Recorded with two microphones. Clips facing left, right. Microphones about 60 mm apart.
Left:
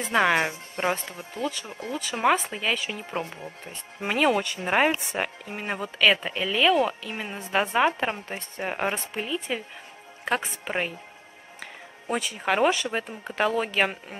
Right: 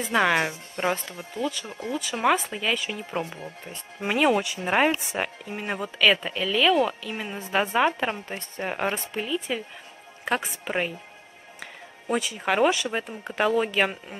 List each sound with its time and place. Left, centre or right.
0.0 s a woman's voice: centre
0.4 s a woman's voice: centre